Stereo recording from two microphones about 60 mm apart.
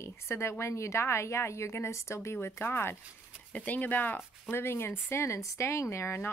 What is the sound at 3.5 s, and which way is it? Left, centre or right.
Speech, left.